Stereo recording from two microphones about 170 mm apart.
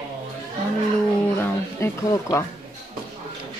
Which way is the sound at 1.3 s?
15° left (ahead or behind).